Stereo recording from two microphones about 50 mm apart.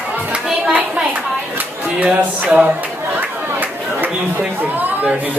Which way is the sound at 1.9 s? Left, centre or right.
Right.